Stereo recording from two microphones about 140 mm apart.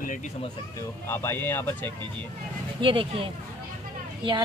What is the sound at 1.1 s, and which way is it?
Speech, 15° left (ahead or behind).